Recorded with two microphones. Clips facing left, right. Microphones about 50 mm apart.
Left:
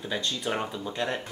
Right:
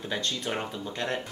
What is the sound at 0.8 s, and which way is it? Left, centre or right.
Speech, centre.